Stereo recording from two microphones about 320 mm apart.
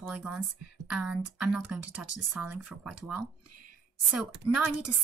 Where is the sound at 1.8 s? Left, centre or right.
Right.